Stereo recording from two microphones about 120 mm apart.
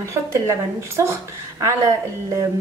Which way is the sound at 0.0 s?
25° right (ahead or behind).